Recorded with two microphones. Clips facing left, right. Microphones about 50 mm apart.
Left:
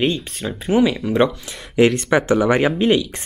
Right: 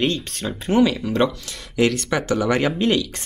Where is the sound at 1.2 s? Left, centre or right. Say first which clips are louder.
Left 2 dB; left.